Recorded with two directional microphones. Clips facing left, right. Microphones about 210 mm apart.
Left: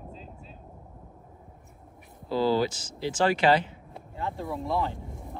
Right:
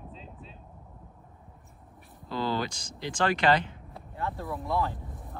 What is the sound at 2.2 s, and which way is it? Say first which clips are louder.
Speech: left 6 dB; 5° left (ahead or behind).